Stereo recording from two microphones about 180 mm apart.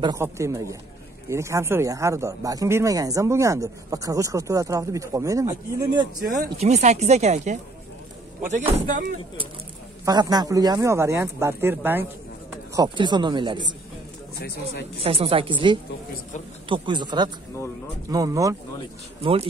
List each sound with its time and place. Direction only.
0.0 s speech: 15° right (ahead or behind)
6.6 s speech: 40° right (ahead or behind)
10.0 s speech: 20° right (ahead or behind)
12.7 s speech: 25° right (ahead or behind)
15.0 s speech: 30° right (ahead or behind)